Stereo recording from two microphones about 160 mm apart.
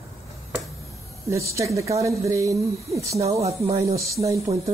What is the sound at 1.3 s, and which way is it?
Speech, 20° right (ahead or behind).